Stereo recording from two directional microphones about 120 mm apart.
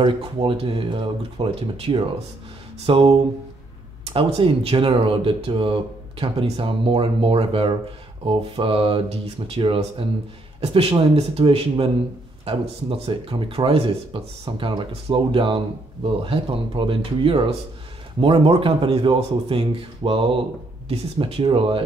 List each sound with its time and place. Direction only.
0.0 s speech: 45° right (ahead or behind)
13.0 s speech: 50° right (ahead or behind)